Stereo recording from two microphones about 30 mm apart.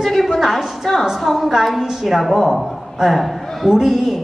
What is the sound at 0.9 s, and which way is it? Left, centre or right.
Speech, centre.